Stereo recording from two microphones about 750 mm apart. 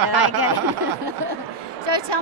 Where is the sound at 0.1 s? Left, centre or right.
Right.